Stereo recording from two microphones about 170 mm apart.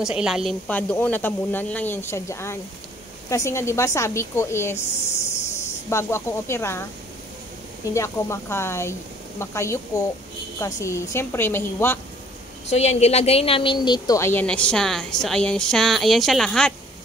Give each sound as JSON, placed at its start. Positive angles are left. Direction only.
{"t": 0.0, "sound": "speech", "side_deg": -5}
{"t": 5.9, "sound": "speech", "side_deg": 15}
{"t": 7.9, "sound": "speech", "side_deg": 15}
{"t": 12.6, "sound": "a woman's voice", "side_deg": 40}